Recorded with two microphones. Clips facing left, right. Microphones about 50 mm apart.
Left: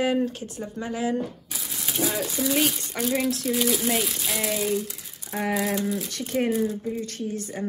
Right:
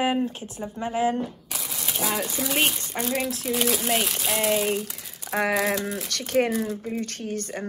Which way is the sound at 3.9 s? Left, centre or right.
Right.